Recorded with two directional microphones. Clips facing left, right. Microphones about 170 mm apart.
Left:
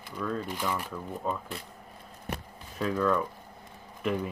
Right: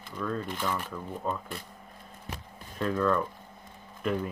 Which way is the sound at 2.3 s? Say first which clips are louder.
Left 5 dB; 60° left (ahead or behind).